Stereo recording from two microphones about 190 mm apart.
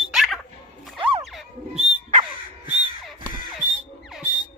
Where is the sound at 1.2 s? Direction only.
Centre (ahead or behind).